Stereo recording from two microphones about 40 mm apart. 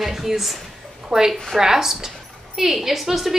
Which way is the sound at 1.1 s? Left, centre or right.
Centre.